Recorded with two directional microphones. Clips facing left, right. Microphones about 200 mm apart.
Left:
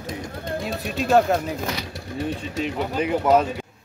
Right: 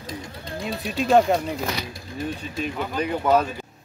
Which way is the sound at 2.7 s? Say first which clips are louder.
Left 3 dB; 20° left (ahead or behind).